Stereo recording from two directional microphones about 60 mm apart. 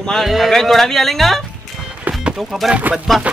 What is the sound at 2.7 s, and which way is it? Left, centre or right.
Speech, right.